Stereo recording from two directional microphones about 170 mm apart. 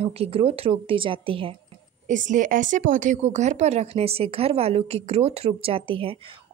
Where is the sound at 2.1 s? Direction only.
50° right (ahead or behind); by 6.3 s 30° right (ahead or behind).